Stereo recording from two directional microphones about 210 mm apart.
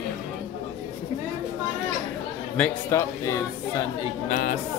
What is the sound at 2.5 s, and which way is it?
Speech, 10° left (ahead or behind).